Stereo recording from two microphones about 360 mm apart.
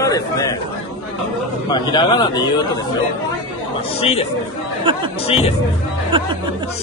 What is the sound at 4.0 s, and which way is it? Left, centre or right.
Speech, centre.